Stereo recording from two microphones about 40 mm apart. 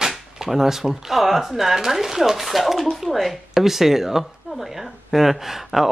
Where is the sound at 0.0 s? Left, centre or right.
Centre.